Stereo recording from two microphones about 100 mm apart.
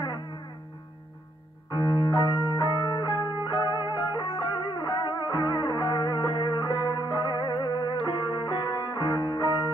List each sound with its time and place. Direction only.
1.7 s music: 45° left (ahead or behind)
8.0 s music: 55° left (ahead or behind)